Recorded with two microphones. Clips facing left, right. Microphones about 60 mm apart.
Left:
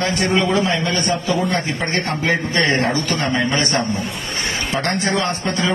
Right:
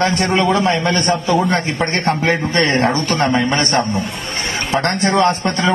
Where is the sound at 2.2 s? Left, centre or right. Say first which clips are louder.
Right 2 dB; right.